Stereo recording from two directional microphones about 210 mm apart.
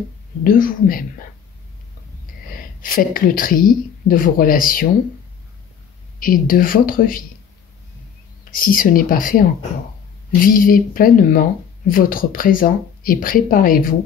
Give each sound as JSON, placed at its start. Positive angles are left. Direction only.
{"t": 0.4, "sound": "speech", "side_deg": 40}
{"t": 2.8, "sound": "speech", "side_deg": 45}
{"t": 6.1, "sound": "speech", "side_deg": 40}
{"t": 8.5, "sound": "speech", "side_deg": 40}